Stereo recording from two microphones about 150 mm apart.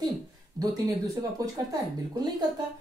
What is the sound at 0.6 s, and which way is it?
Speech, 25° right (ahead or behind).